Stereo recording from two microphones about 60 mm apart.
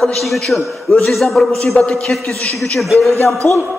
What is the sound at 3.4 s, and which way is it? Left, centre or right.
Speech, left.